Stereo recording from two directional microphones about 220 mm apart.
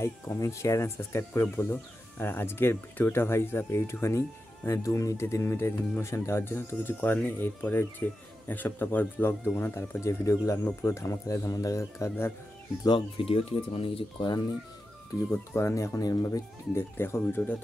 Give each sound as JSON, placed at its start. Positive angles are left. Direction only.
{"t": 0.0, "sound": "speech", "side_deg": 10}
{"t": 12.8, "sound": "speech", "side_deg": 25}